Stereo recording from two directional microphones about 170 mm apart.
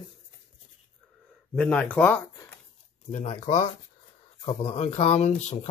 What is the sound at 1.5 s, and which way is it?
Speech, 5° left (ahead or behind).